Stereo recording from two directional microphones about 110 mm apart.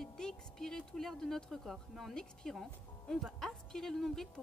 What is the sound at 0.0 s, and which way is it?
Speech, 5° left (ahead or behind).